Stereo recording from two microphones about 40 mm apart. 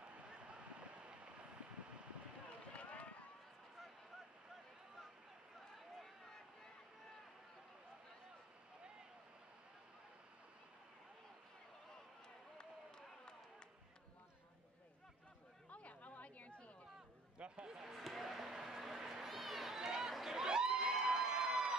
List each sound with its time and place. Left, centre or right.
0.0 s vehicle: right
2.8 s run: left
15.7 s chatter: left
17.4 s a sound: right
17.7 s basketball bounce: centre
18.0 s a sound: centre
20.4 s crowd: centre